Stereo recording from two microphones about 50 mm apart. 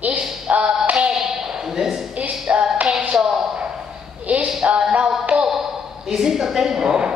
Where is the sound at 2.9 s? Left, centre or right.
Centre.